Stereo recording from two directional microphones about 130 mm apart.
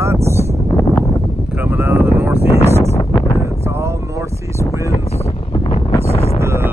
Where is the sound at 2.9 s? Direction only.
25° left (ahead or behind).